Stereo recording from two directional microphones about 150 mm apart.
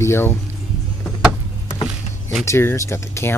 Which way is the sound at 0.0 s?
15° left (ahead or behind).